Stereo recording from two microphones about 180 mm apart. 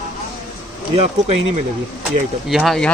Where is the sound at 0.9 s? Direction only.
35° right (ahead or behind).